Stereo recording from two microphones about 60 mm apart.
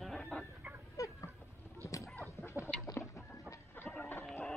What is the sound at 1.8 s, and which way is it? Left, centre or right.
Dog, left.